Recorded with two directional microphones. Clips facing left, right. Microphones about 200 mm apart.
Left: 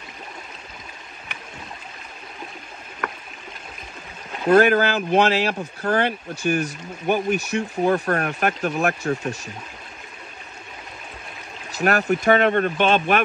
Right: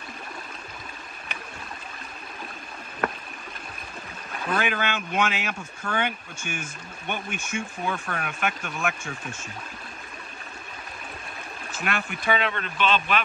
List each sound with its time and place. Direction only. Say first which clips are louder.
4.6 s speech: left 11 dB; 40° left (ahead or behind)
11.7 s speech: left 11 dB; 40° left (ahead or behind)